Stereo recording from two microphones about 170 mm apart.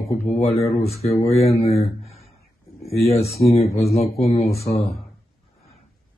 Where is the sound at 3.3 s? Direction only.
35° left (ahead or behind).